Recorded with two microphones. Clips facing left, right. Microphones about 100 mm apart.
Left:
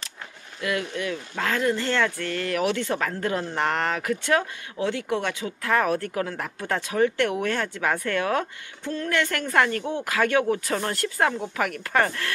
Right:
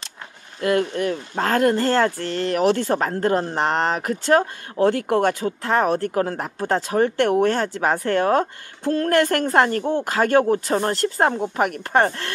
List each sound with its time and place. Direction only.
0.6 s a woman's voice: 45° right (ahead or behind)
1.6 s speech: 55° right (ahead or behind)
1.9 s a woman's voice: 35° right (ahead or behind)
4.7 s a woman's voice: 50° right (ahead or behind); by 12.3 s 30° right (ahead or behind)